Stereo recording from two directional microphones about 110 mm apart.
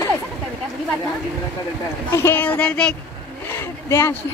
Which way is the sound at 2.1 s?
20° left (ahead or behind).